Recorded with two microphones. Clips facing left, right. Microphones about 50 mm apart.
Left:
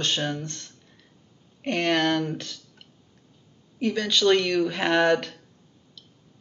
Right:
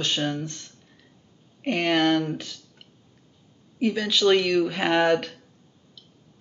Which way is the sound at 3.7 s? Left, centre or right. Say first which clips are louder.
Right 1 dB; centre.